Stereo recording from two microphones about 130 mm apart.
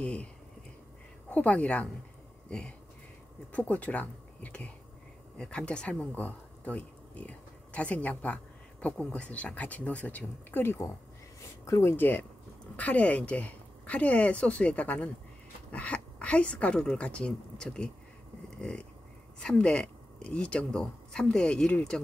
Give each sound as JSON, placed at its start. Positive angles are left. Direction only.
{"t": 0.0, "sound": "speech", "side_deg": 10}
{"t": 1.3, "sound": "speech", "side_deg": 10}
{"t": 18.5, "sound": "a sound", "side_deg": 10}
{"t": 19.4, "sound": "speech", "side_deg": 5}